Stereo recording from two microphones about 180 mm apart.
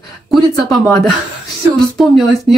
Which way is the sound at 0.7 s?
Centre (ahead or behind).